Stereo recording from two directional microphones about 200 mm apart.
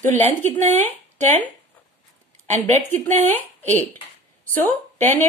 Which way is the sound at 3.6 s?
35° right (ahead or behind).